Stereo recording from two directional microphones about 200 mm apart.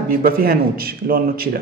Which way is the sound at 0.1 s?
45° right (ahead or behind).